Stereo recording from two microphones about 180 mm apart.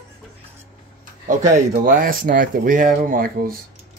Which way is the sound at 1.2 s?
50° right (ahead or behind).